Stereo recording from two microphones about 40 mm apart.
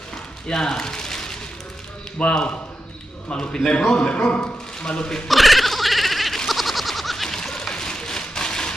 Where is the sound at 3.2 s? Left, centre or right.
Centre.